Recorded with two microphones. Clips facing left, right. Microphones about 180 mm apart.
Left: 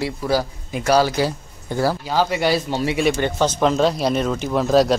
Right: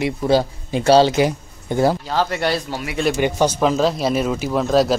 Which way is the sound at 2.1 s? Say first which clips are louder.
Left 1 dB; 5° left (ahead or behind).